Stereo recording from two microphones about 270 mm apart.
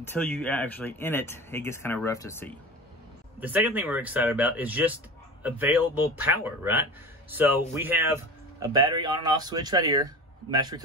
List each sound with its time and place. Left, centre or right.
0.0 s speech: centre
3.3 s speech: centre